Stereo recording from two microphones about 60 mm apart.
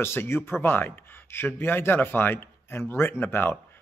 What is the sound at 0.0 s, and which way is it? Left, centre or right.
Speech, left.